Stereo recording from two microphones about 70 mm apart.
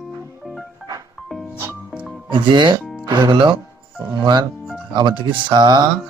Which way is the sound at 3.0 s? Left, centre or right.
Right.